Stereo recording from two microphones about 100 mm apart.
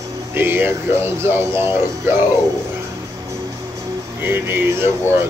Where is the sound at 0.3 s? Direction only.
20° right (ahead or behind).